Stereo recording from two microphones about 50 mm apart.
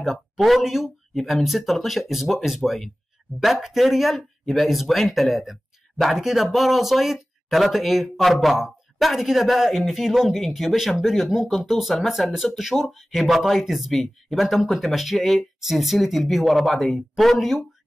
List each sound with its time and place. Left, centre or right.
0.0 s speech: centre